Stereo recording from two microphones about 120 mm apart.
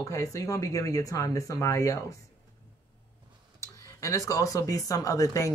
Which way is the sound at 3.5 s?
25° left (ahead or behind).